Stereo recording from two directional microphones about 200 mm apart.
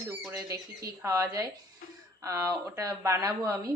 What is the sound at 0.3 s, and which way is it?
Bird, 15° right (ahead or behind).